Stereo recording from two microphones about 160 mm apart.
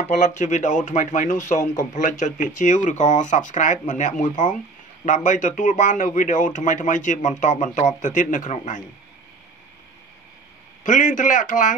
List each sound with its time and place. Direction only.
0.0 s a man's voice: 50° left (ahead or behind)
10.8 s a man's voice: 50° left (ahead or behind)